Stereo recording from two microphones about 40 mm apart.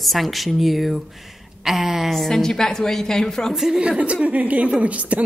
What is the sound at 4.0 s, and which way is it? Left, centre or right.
A woman's voice, right.